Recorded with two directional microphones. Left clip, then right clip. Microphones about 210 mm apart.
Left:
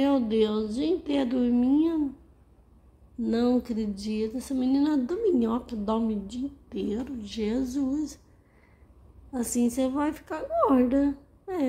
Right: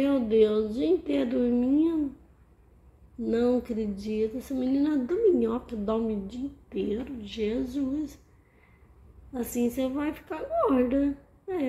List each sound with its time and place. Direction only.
0.0 s a woman's voice: 10° left (ahead or behind)
3.2 s a woman's voice: 15° left (ahead or behind)
9.3 s a woman's voice: 15° left (ahead or behind)